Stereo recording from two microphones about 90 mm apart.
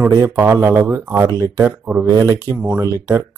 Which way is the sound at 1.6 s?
15° right (ahead or behind).